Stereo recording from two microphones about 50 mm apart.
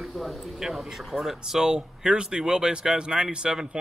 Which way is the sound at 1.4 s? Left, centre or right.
Centre.